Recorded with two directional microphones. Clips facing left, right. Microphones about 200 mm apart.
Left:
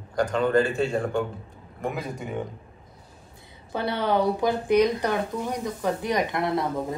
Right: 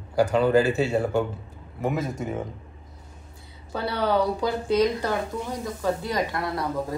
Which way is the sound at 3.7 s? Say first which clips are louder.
Even; 20° left (ahead or behind).